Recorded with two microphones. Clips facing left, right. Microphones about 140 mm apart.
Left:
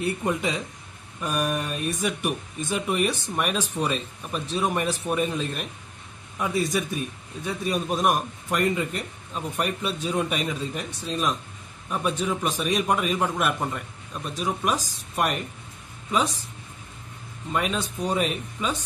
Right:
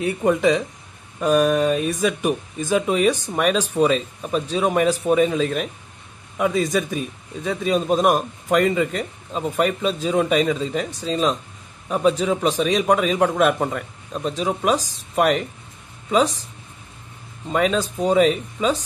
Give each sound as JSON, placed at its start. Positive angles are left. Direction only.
{"t": 0.0, "sound": "a man's voice", "side_deg": -90}
{"t": 17.5, "sound": "a man's voice", "side_deg": -90}